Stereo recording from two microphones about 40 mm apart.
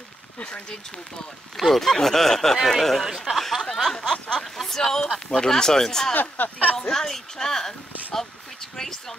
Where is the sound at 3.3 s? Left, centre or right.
Centre.